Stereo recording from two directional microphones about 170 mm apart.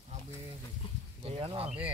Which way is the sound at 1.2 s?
35° right (ahead or behind).